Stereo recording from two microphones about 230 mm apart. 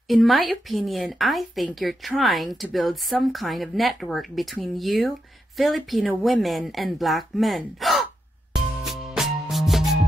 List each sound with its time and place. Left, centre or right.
0.1 s speech: centre
8.5 s music: centre